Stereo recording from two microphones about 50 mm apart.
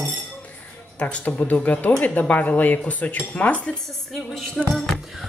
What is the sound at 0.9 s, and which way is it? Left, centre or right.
Speech, left.